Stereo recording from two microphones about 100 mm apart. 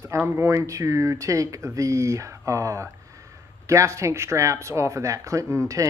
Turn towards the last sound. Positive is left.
turn(degrees=-30)  # may be behind; listen again after turning